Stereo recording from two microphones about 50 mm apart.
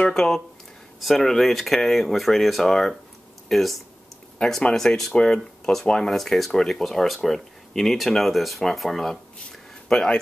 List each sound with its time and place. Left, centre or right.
0.0 s speech: centre
4.4 s speech: centre
9.8 s speech: centre